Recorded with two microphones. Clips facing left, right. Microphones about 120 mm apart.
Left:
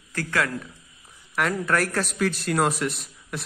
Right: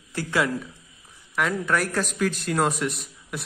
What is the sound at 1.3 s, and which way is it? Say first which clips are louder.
A man's voice: left 1 dB; centre (ahead or behind).